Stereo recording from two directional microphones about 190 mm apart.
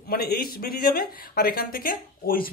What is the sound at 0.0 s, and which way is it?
Speech, 55° left (ahead or behind).